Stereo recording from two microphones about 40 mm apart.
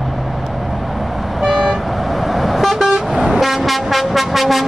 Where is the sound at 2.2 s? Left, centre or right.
Centre.